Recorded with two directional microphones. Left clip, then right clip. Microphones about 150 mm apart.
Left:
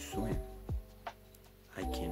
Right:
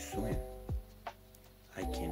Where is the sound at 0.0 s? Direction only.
10° left (ahead or behind).